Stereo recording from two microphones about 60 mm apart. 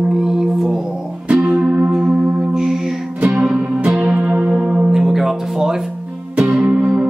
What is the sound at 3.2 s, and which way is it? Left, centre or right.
Music, right.